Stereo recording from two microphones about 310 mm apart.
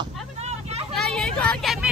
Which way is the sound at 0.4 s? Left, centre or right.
Centre.